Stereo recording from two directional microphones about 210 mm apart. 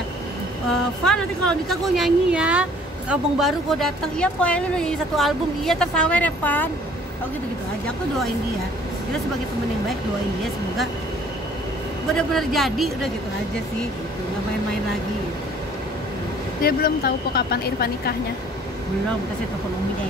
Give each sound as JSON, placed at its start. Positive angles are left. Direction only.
{"t": 1.0, "sound": "speech", "side_deg": 5}
{"t": 12.2, "sound": "speech", "side_deg": 0}
{"t": 16.6, "sound": "speech", "side_deg": 45}